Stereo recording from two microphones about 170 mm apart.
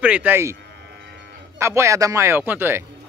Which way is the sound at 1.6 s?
15° right (ahead or behind).